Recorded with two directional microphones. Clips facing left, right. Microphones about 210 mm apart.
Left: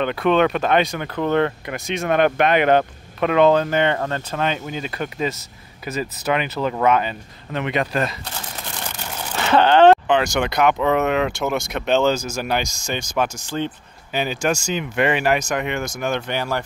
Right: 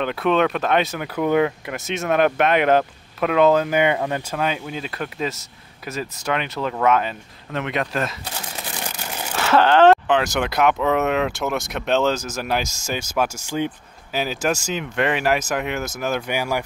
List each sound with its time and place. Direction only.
0.0 s speech: centre (ahead or behind)
9.4 s speech: centre (ahead or behind)